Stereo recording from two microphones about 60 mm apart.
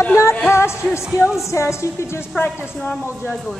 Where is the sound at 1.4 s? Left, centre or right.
Left.